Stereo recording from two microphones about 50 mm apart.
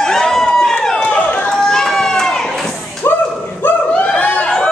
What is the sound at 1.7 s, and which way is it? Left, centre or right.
Run, centre.